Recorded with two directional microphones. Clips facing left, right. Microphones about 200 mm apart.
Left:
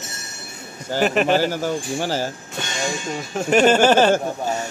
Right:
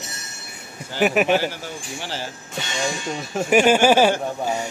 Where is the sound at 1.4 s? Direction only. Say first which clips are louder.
Left 7 dB; 45° left (ahead or behind).